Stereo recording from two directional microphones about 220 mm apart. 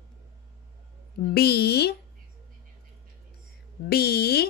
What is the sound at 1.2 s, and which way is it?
Speech, 45° left (ahead or behind).